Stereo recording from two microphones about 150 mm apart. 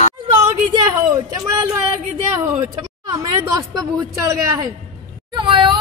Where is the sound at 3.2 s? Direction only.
25° right (ahead or behind).